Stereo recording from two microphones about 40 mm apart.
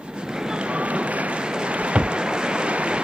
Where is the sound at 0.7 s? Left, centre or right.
Right.